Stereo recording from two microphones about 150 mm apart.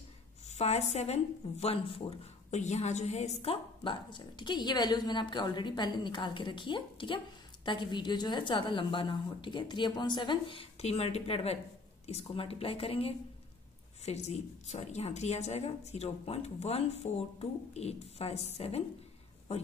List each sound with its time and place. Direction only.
0.5 s a woman's voice: 45° left (ahead or behind)
3.8 s a woman's voice: 35° left (ahead or behind)